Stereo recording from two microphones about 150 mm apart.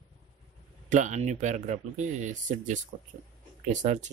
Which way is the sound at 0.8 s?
55° right (ahead or behind).